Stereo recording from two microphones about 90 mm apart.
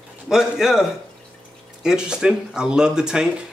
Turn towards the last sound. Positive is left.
turn(degrees=-10)  # may be behind; listen again after turning